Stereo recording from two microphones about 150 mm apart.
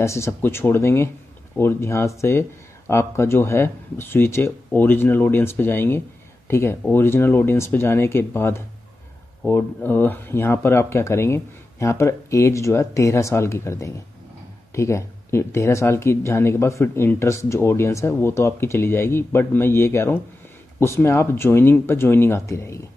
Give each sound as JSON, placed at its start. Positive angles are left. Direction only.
{"t": 0.0, "sound": "speech", "side_deg": 20}